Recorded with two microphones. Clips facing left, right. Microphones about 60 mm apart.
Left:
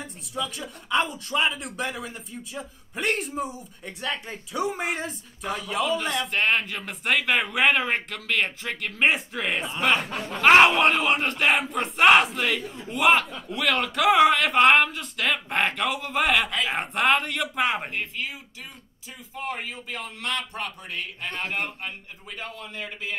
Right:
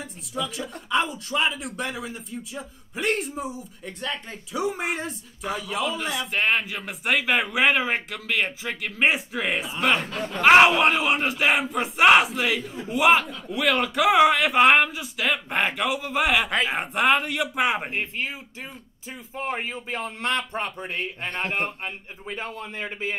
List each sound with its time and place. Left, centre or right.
0.0 s speech: centre
17.9 s speech: right
19.3 s speech: right